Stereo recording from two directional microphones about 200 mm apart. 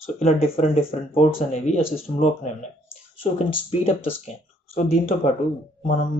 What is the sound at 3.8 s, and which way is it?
Speech, 30° left (ahead or behind).